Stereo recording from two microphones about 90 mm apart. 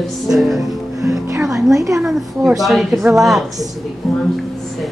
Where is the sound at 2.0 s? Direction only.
5° right (ahead or behind).